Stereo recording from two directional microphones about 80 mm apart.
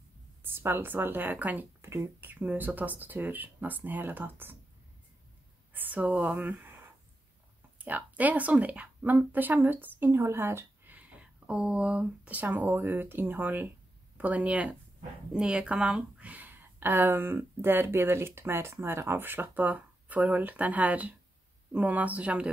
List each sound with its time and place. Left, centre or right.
0.4 s a woman's voice: right
1.8 s speech: right
5.7 s speech: right
7.8 s speech: right